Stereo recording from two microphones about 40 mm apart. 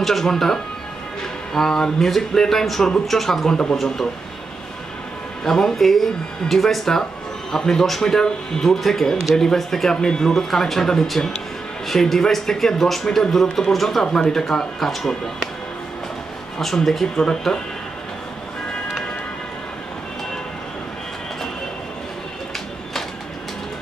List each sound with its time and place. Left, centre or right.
0.0 s speech: centre
5.4 s speech: centre
14.0 s speech: centre
16.5 s speech: centre